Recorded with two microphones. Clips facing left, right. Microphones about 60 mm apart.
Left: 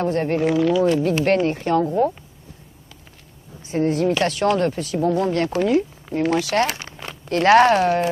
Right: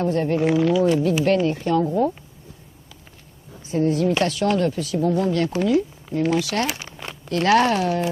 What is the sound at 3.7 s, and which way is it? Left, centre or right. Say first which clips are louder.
Speech: even; left.